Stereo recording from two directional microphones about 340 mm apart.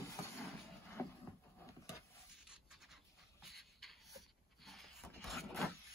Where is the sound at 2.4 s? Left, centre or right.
Centre.